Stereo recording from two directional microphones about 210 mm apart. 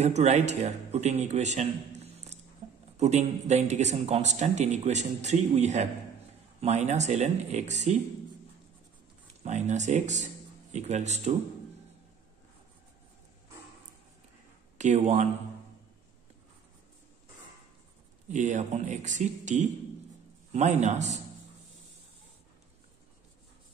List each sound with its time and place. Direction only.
0.0 s a man's voice: 30° right (ahead or behind)
9.3 s speech: 30° right (ahead or behind)
14.8 s a man's voice: 35° right (ahead or behind)
18.3 s a man's voice: 35° right (ahead or behind)